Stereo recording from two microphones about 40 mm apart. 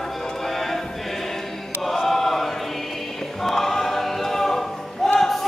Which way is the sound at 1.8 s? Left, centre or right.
Centre.